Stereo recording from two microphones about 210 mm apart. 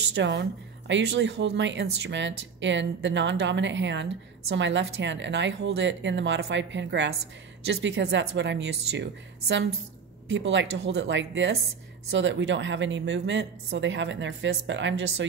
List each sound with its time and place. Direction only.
0.1 s speech: 60° right (ahead or behind)